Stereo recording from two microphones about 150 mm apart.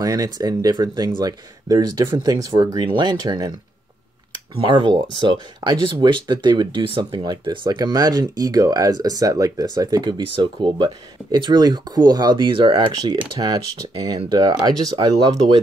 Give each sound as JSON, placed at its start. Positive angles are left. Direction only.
{"t": 0.0, "sound": "speech", "side_deg": -25}